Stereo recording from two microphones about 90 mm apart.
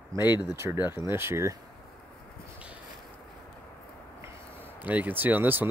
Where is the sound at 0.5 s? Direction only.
25° right (ahead or behind).